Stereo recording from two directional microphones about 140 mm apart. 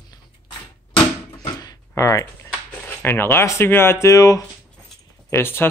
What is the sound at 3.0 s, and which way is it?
Speech, 15° left (ahead or behind).